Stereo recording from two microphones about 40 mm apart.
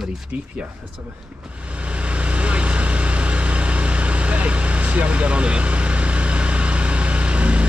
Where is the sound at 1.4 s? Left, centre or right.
Right.